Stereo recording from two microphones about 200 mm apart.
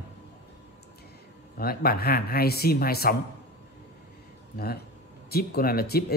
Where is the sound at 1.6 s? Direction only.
50° left (ahead or behind).